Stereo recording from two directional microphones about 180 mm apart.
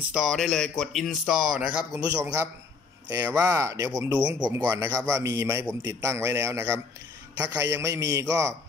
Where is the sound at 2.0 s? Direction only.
20° right (ahead or behind).